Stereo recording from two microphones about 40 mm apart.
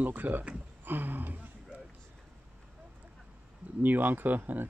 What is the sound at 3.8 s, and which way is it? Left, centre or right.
Speech, right.